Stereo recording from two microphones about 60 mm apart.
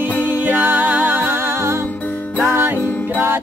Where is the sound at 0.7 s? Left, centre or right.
Right.